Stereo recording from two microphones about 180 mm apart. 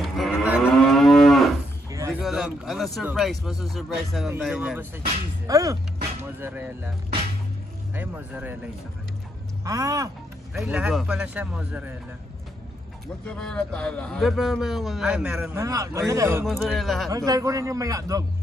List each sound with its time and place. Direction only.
0.0 s moo: centre (ahead or behind)
1.9 s a sound: 20° right (ahead or behind)
2.1 s a man's voice: 5° right (ahead or behind)
7.9 s speech: 10° right (ahead or behind)
9.7 s a man's voice: 20° right (ahead or behind)
10.5 s speech: 5° right (ahead or behind)
13.2 s a man's voice: 5° left (ahead or behind)
15.6 s speech: 20° right (ahead or behind)
16.4 s a man's voice: centre (ahead or behind)
17.1 s a man's voice: 20° right (ahead or behind)